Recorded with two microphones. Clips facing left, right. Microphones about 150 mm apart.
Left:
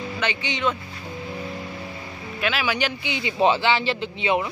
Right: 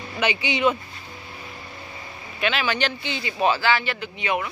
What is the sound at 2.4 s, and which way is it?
Speech, 5° left (ahead or behind).